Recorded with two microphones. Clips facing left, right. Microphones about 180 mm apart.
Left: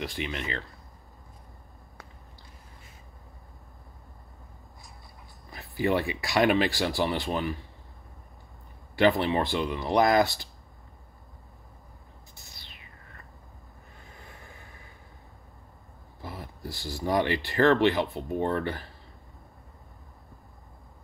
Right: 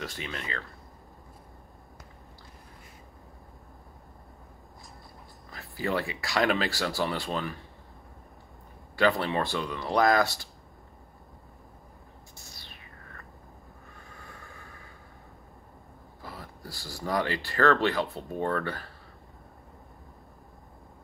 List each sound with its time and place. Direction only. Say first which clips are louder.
0.0 s speech: left 4 dB; 15° left (ahead or behind)
5.5 s speech: left 4 dB; 20° left (ahead or behind)
8.9 s speech: left 3 dB; 20° left (ahead or behind)
14.1 s vehicle: even; 20° left (ahead or behind)
16.2 s speech: left 4 dB; 20° left (ahead or behind)